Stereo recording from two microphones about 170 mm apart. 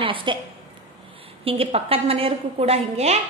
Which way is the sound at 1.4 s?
35° right (ahead or behind).